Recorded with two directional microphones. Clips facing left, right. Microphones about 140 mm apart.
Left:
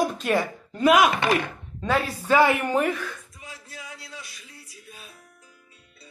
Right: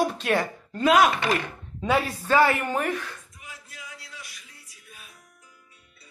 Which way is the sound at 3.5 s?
30° left (ahead or behind).